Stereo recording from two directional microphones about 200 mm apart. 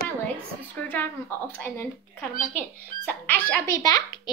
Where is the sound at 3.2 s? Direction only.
10° left (ahead or behind).